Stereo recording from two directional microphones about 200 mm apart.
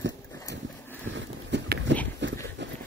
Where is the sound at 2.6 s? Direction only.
60° right (ahead or behind).